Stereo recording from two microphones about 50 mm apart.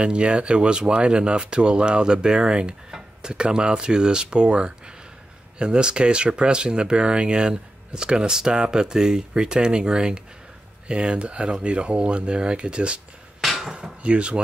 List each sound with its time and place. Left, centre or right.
0.0 s speech: right
13.4 s hammer: centre
13.7 s speech: centre